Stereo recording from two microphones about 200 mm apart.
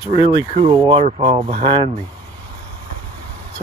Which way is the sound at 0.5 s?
25° right (ahead or behind).